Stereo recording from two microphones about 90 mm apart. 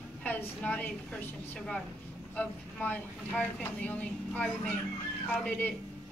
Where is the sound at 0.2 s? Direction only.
15° left (ahead or behind).